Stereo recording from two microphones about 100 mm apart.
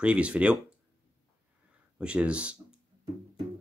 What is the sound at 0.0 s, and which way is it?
Speech, 10° right (ahead or behind).